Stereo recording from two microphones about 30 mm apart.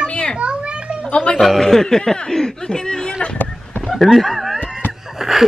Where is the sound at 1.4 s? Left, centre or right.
Centre.